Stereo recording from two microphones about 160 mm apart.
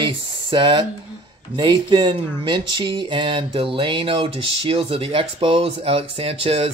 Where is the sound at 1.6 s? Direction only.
30° right (ahead or behind).